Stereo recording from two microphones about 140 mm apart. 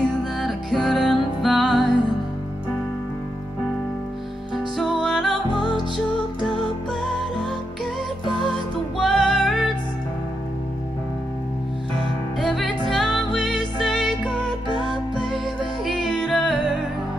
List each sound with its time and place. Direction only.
0.4 s music: centre (ahead or behind)
4.7 s music: centre (ahead or behind)
5.5 s music: 35° left (ahead or behind)
6.4 s music: centre (ahead or behind)
12.4 s music: centre (ahead or behind)